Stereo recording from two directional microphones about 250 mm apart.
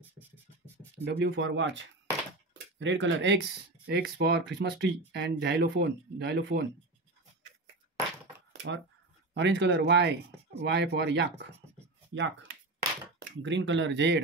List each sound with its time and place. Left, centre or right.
1.0 s speech: right
2.8 s speech: right
8.5 s a sound: right
9.3 s speech: right
13.2 s speech: right